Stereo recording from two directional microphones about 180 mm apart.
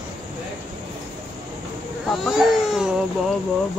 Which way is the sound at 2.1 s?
Centre (ahead or behind).